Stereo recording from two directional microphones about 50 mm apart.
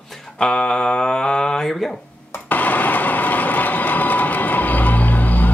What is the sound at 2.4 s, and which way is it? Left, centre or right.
Vehicle, left.